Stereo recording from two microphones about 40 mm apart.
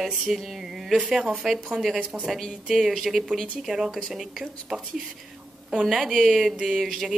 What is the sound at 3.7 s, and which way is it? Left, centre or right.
Speech, right.